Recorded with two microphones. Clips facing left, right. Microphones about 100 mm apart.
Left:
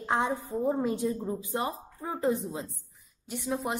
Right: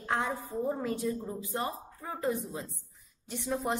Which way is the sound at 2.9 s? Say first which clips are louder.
Left 2 dB; centre (ahead or behind).